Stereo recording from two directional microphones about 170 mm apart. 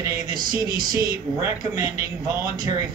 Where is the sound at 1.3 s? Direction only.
15° right (ahead or behind).